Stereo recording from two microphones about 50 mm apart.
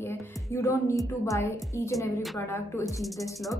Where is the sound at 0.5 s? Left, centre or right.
Left.